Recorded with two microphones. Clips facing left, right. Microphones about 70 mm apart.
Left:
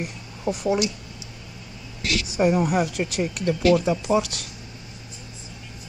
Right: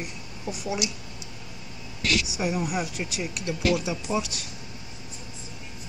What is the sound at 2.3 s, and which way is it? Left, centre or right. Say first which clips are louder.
Speech: left 7 dB; left.